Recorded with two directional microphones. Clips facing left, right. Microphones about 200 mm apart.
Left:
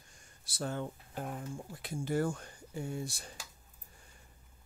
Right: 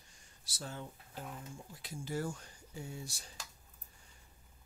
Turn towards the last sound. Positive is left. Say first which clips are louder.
# left 7 dB
turn(degrees=55)  # may be behind; listen again after turning